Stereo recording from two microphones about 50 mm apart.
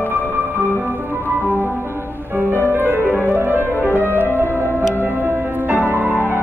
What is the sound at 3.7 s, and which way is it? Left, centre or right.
Music, left.